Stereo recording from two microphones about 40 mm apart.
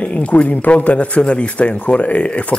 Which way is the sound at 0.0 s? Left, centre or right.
Left.